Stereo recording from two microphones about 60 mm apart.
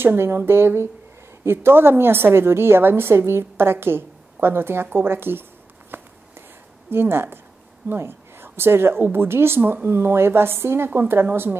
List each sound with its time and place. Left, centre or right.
0.0 s a woman's voice: right
5.9 s walk: right
6.9 s a woman's voice: right